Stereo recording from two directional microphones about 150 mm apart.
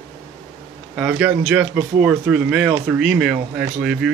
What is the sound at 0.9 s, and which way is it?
Speech, 10° right (ahead or behind).